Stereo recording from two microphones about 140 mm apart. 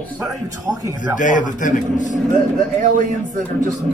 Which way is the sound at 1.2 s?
65° left (ahead or behind).